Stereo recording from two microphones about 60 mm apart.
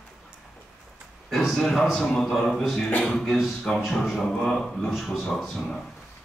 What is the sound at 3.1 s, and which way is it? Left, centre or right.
A man's voice, centre.